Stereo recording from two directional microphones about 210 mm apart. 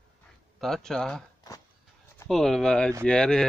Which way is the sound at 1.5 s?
15° left (ahead or behind).